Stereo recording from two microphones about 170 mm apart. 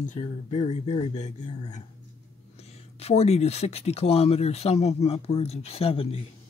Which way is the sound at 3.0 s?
40° left (ahead or behind).